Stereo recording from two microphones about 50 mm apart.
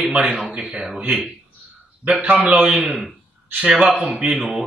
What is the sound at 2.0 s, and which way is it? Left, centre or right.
Speech, right.